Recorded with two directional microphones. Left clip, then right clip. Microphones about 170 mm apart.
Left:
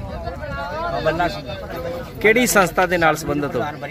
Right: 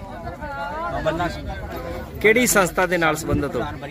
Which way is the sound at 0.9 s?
25° left (ahead or behind).